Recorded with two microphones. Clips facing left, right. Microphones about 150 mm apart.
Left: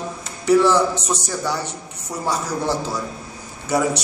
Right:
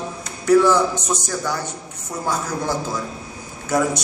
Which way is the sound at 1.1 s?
10° left (ahead or behind).